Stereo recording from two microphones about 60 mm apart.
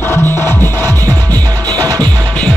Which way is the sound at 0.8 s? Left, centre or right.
Right.